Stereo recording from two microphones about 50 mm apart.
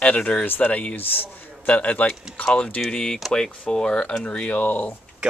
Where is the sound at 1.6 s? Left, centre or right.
Left.